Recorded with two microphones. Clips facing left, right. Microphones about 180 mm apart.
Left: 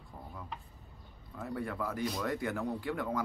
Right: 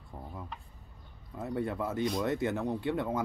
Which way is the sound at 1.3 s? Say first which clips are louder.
Right 4 dB; 25° right (ahead or behind).